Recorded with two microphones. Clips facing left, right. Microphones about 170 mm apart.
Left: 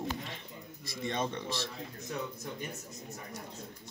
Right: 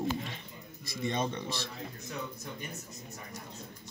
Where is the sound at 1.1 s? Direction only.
20° right (ahead or behind).